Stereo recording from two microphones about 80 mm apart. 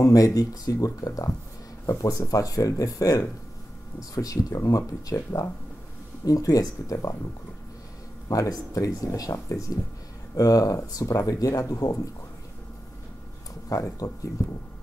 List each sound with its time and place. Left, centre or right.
0.0 s speech: left
8.3 s speech: left
13.9 s speech: left